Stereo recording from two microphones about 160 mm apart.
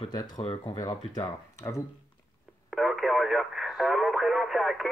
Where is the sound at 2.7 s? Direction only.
Centre (ahead or behind).